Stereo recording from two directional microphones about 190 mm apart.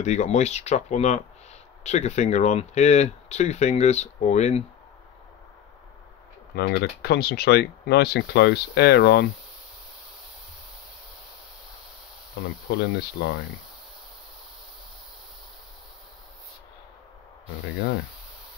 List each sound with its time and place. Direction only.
0.0 s speech: 35° left (ahead or behind)
6.5 s speech: 60° left (ahead or behind)
12.6 s speech: 55° left (ahead or behind)